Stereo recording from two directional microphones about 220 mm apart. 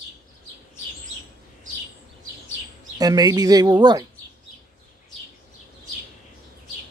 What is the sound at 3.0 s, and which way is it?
Speech, 15° right (ahead or behind).